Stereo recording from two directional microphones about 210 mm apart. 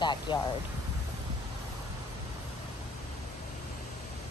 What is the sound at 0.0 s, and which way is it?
Speech, 20° left (ahead or behind).